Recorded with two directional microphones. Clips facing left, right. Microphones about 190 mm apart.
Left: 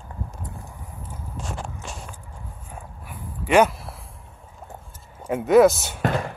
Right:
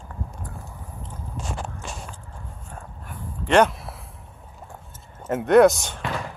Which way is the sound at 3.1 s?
10° left (ahead or behind).